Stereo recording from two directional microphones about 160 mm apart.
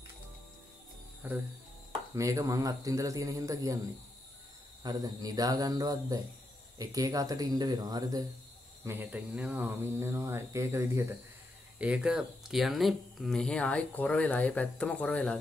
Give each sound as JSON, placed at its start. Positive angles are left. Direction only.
{"t": 1.2, "sound": "a man's voice", "side_deg": -10}
{"t": 4.8, "sound": "a man's voice", "side_deg": -25}
{"t": 8.8, "sound": "speech", "side_deg": -15}
{"t": 11.8, "sound": "speech", "side_deg": -5}